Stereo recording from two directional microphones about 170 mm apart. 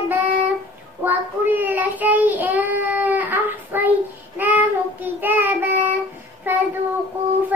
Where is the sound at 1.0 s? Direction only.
10° right (ahead or behind).